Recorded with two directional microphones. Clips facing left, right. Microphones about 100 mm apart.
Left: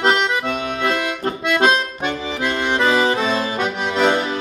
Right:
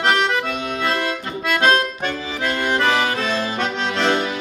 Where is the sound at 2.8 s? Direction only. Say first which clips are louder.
Left 5 dB; 25° left (ahead or behind).